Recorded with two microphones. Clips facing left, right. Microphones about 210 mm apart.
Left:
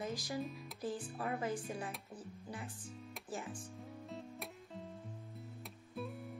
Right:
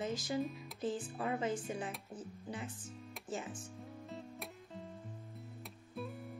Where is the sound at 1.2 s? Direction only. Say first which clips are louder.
Right 2 dB; 25° right (ahead or behind).